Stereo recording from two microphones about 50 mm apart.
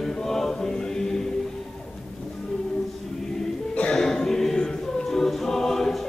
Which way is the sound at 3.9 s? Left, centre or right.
Centre.